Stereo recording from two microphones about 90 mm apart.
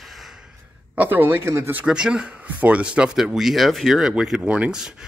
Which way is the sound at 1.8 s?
10° right (ahead or behind).